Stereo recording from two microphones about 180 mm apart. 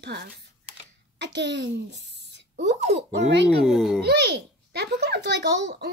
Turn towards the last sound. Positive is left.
turn(degrees=-70)  # may be behind; listen again after turning